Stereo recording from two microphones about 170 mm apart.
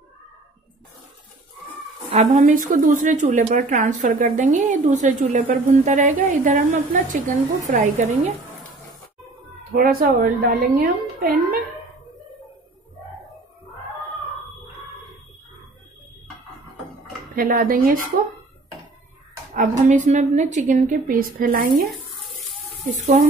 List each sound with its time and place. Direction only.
2.0 s a woman's voice: 40° right (ahead or behind)
9.7 s a woman's voice: 60° right (ahead or behind)
17.4 s a woman's voice: 55° right (ahead or behind)
19.9 s a woman's voice: 45° right (ahead or behind)
22.9 s a woman's voice: 45° right (ahead or behind)